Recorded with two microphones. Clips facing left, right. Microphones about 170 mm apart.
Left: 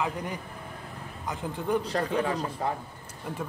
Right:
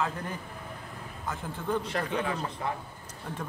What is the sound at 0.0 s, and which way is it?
Speech, 15° left (ahead or behind).